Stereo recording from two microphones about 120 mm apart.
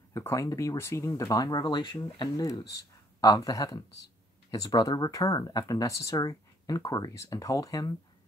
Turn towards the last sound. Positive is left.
turn(degrees=30)  # may be behind; listen again after turning